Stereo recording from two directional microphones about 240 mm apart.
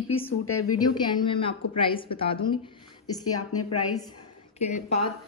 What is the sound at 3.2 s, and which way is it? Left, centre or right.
Speech, left.